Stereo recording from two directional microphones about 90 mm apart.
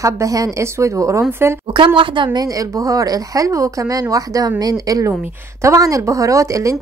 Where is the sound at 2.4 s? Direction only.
40° right (ahead or behind).